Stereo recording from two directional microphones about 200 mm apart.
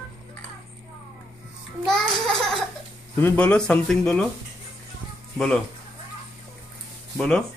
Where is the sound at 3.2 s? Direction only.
5° left (ahead or behind).